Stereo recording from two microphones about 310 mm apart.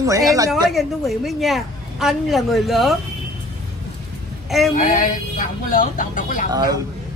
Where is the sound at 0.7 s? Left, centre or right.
Centre.